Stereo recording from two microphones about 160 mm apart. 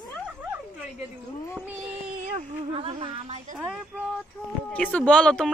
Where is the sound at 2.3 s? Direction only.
35° right (ahead or behind).